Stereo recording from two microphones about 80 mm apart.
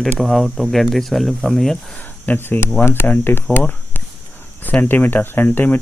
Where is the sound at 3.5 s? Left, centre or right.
Left.